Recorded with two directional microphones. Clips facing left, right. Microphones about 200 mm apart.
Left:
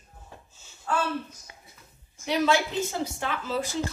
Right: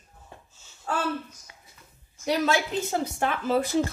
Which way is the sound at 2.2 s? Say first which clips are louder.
Even; 45° right (ahead or behind).